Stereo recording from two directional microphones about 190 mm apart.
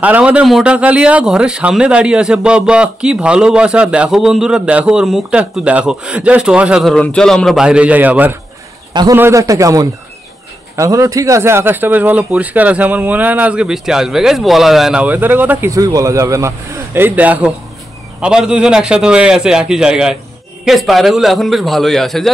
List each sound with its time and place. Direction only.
0.0 s a man's voice: 5° right (ahead or behind)
8.9 s a man's voice: 20° right (ahead or behind); by 22.3 s centre (ahead or behind)